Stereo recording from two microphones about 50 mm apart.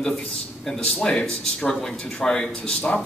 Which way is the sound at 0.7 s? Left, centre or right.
Centre.